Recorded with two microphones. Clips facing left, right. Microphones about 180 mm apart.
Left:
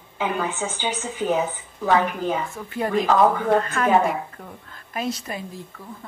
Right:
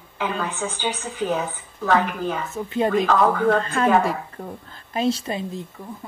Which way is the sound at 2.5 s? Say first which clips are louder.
Right 3 dB; 20° right (ahead or behind).